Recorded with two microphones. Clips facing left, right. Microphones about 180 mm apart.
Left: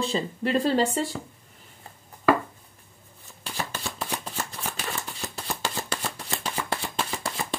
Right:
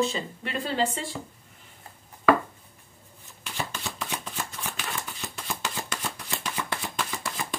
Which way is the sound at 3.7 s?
35° left (ahead or behind).